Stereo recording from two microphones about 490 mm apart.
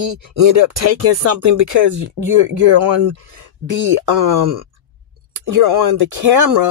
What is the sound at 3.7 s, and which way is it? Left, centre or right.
Speech, right.